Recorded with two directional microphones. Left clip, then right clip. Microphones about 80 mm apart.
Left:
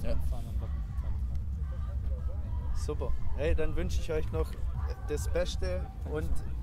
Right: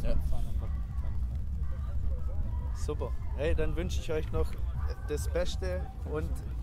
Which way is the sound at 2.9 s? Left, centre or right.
Centre.